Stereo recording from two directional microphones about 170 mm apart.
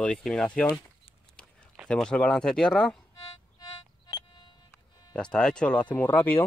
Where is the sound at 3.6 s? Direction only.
25° left (ahead or behind).